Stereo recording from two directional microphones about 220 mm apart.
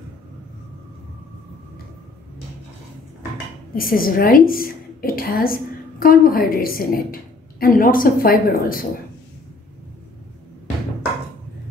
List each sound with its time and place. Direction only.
3.7 s a woman's voice: 40° left (ahead or behind)